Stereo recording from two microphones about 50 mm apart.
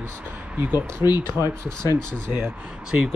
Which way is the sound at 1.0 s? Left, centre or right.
Right.